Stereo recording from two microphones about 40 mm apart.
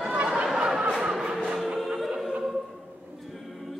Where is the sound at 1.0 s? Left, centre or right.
Centre.